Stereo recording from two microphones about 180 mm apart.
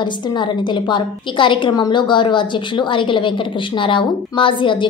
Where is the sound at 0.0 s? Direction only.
25° left (ahead or behind).